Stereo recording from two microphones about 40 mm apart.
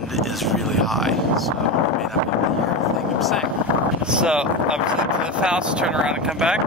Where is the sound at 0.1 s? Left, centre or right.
Centre.